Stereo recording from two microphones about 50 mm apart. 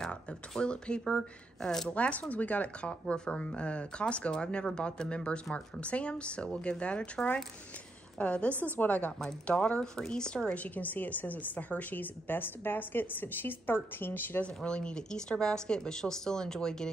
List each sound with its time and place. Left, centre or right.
0.1 s speech: centre
1.9 s speech: left
8.2 s a woman's voice: left
9.2 s speech: left
10.6 s a woman's voice: left
14.4 s speech: left